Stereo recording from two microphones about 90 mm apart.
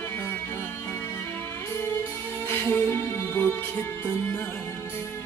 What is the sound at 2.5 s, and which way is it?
Music, 25° left (ahead or behind).